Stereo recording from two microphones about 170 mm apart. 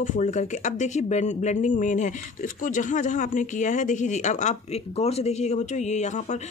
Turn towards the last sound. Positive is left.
turn(degrees=45)  # may be behind; listen again after turning